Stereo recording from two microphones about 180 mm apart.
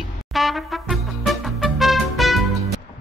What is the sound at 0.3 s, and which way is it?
Brass instrument, centre (ahead or behind).